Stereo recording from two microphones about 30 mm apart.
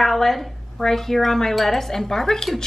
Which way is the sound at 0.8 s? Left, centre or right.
Centre.